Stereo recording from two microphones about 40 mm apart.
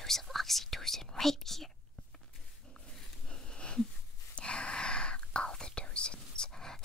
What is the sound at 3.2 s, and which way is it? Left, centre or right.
Wheeze, left.